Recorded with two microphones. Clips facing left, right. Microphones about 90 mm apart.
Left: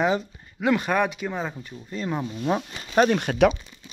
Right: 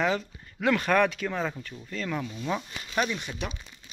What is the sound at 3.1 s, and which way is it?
Speech, 65° left (ahead or behind).